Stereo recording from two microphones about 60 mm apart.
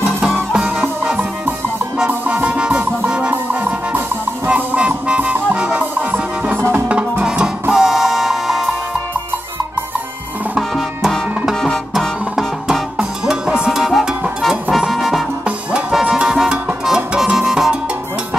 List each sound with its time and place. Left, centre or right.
0.5 s music: centre
4.5 s music: right; by 8.6 s centre
11.0 s music: centre
15.9 s music: centre